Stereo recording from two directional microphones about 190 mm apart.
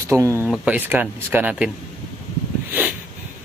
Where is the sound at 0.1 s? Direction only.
15° right (ahead or behind).